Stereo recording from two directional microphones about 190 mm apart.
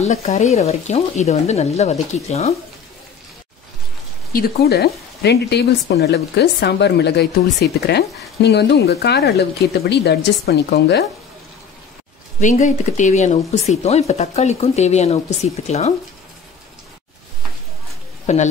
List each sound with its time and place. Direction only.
0.0 s speech: 35° left (ahead or behind)
4.3 s speech: 55° left (ahead or behind)
12.4 s speech: 40° left (ahead or behind)
18.2 s speech: 35° left (ahead or behind)